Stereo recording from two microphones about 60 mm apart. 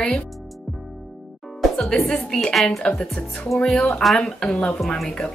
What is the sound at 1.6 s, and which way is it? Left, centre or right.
Music, centre.